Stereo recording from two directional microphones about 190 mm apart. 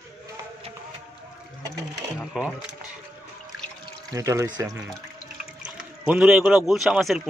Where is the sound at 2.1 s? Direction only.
Centre (ahead or behind).